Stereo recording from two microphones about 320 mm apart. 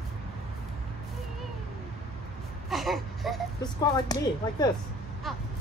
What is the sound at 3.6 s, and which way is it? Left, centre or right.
Speech, centre.